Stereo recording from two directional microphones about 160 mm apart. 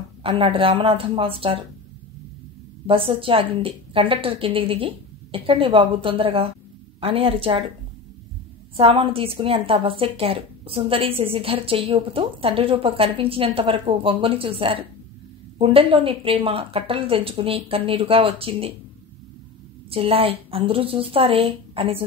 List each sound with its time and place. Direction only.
0.2 s a woman's voice: 35° right (ahead or behind)
2.9 s a woman's voice: 35° right (ahead or behind)
8.7 s a woman's voice: 35° right (ahead or behind)
19.9 s a woman's voice: 35° right (ahead or behind)